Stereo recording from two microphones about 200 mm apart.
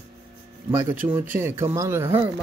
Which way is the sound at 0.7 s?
15° right (ahead or behind).